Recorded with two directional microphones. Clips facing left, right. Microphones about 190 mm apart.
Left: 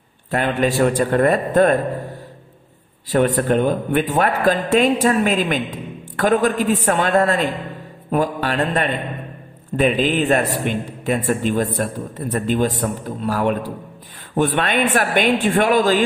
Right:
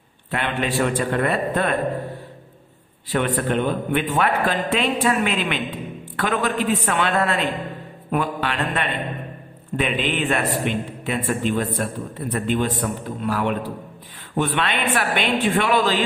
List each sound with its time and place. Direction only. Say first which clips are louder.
0.3 s a man's voice: left 5 dB; 40° left (ahead or behind)
3.1 s a man's voice: left 5 dB; 40° left (ahead or behind)